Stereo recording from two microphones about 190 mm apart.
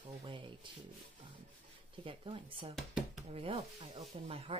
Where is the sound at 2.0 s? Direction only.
25° right (ahead or behind).